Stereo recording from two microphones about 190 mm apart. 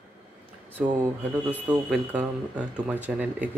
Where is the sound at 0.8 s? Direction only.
5° right (ahead or behind).